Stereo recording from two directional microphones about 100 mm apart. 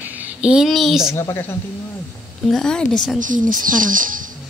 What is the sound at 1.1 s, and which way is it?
Speech, 25° left (ahead or behind).